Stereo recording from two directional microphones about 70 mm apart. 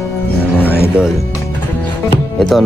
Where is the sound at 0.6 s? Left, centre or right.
Right.